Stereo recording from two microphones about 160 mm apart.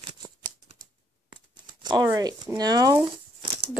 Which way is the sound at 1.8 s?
25° right (ahead or behind).